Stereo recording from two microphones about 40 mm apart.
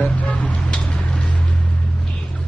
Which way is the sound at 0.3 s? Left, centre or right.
Left.